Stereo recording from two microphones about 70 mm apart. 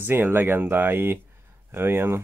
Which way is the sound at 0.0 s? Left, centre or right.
Right.